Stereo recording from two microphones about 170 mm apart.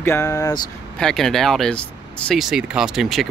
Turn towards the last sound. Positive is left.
turn(degrees=0)  # may be behind; listen again after turning